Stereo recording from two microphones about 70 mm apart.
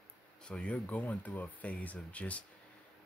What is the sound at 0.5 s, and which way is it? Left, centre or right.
Speech, centre.